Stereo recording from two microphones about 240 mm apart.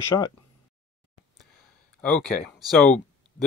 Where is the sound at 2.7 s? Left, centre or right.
Centre.